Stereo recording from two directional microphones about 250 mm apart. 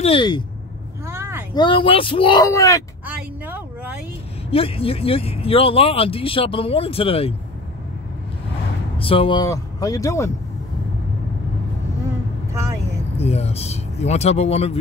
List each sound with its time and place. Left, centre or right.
0.0 s speech: centre
1.0 s vehicle: centre
1.5 s speech: centre
3.1 s a sound: centre
4.5 s speech: left
8.9 s speech: left
13.2 s speech: left